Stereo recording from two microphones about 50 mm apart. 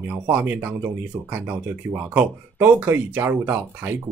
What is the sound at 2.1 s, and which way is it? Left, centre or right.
Speech, right.